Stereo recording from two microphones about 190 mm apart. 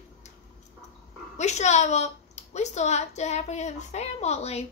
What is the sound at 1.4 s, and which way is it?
A woman's voice, 35° left (ahead or behind).